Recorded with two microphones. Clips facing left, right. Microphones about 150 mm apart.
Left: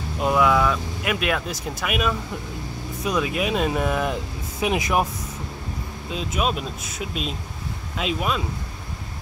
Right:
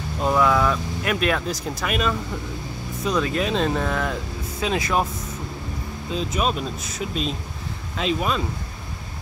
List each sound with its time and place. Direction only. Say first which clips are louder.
0.2 s speech: even; 5° left (ahead or behind)
6.1 s speech: right 1 dB; 5° left (ahead or behind)